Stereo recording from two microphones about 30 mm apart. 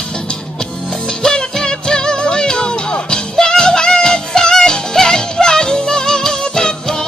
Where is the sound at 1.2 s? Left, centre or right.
Left.